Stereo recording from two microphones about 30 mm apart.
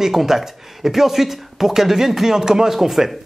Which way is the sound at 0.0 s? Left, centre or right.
Centre.